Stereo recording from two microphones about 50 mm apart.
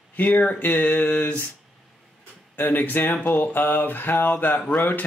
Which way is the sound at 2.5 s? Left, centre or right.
Left.